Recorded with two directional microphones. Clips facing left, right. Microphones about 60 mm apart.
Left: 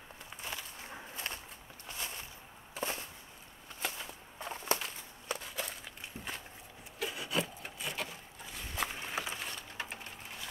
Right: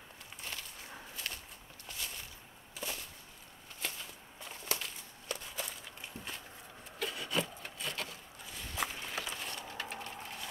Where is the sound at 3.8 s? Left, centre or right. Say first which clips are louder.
Left 3 dB; left.